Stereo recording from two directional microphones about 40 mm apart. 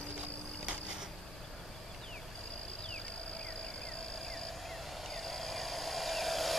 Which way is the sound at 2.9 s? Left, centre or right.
Left.